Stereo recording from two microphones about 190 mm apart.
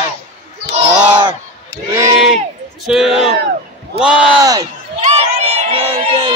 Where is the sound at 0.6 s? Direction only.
25° right (ahead or behind).